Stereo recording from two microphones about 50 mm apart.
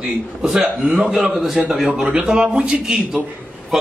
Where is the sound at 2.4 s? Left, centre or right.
Centre.